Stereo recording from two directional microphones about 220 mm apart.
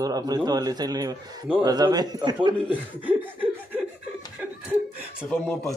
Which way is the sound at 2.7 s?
10° right (ahead or behind).